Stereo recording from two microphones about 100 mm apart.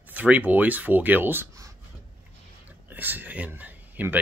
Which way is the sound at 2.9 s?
20° right (ahead or behind).